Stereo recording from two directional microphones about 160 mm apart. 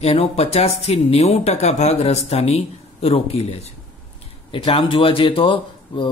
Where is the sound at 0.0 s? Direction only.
40° left (ahead or behind).